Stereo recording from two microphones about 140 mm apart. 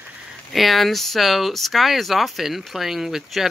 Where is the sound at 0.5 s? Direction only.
Centre (ahead or behind).